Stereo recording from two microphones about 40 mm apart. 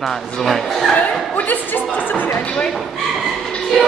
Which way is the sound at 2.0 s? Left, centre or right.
Left.